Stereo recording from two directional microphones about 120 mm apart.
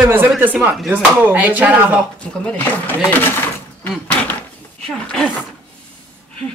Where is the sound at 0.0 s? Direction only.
15° right (ahead or behind).